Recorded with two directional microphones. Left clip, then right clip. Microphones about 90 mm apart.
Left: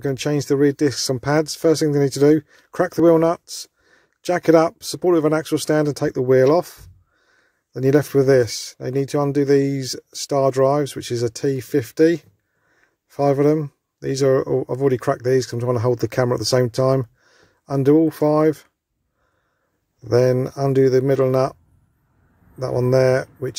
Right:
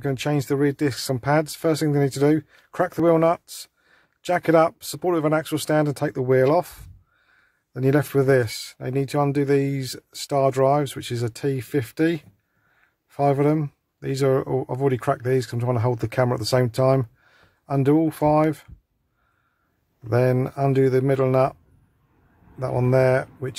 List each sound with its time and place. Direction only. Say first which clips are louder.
0.0 s speech: left 3 dB; 30° left (ahead or behind)
20.1 s speech: left 4 dB; 35° left (ahead or behind)
22.6 s speech: left 3 dB; 40° left (ahead or behind)